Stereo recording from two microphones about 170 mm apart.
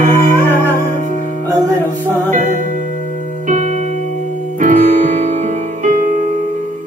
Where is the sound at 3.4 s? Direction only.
45° right (ahead or behind).